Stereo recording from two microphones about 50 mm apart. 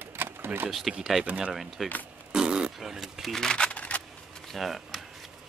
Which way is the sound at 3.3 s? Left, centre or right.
Centre.